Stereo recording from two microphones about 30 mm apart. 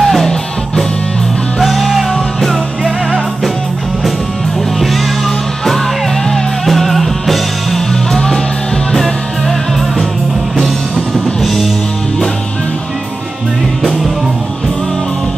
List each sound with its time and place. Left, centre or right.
0.0 s music: centre
1.6 s music: centre
6.6 s music: centre
10.6 s music: centre
11.4 s music: centre